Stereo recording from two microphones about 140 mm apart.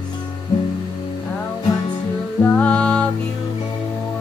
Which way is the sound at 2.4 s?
10° left (ahead or behind).